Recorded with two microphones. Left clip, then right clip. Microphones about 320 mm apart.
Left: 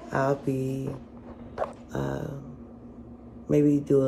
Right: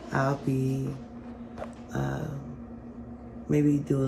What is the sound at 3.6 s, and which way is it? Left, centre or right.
Speech, centre.